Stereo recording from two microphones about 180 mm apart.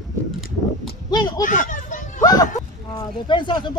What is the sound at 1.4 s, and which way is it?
Children playing, 45° left (ahead or behind).